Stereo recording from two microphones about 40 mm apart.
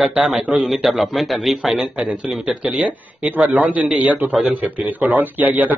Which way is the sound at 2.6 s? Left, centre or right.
Right.